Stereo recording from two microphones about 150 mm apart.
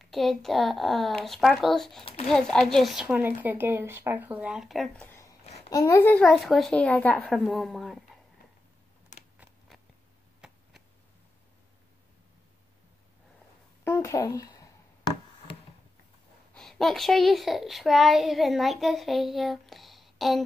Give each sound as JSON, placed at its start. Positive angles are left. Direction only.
{"t": 0.0, "sound": "a child's voice", "side_deg": 0}
{"t": 5.0, "sound": "a sound", "side_deg": 15}
{"t": 5.7, "sound": "a child's voice", "side_deg": 20}
{"t": 6.2, "sound": "a child's voice", "side_deg": 0}
{"t": 9.1, "sound": "a sound", "side_deg": 55}
{"t": 13.8, "sound": "writing", "side_deg": 20}
{"t": 16.5, "sound": "a child's voice", "side_deg": 0}